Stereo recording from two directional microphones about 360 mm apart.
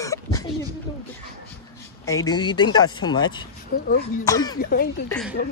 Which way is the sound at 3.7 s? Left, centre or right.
Left.